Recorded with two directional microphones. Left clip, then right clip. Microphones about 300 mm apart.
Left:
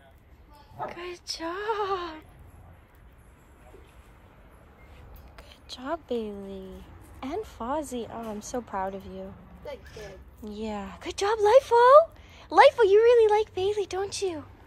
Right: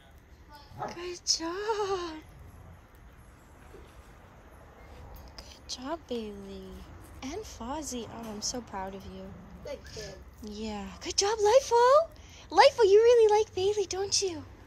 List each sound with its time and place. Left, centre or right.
0.8 s female singing: centre
5.4 s speech: centre